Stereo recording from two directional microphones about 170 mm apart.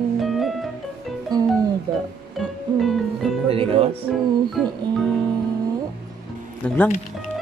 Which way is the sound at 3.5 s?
35° right (ahead or behind).